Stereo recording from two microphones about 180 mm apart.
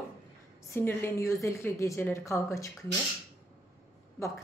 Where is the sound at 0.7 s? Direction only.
15° left (ahead or behind).